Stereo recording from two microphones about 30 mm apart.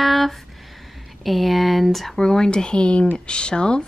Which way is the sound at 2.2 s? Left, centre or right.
Left.